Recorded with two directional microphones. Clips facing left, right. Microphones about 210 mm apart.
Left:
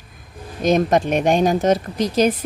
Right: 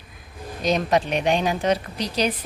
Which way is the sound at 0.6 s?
50° left (ahead or behind).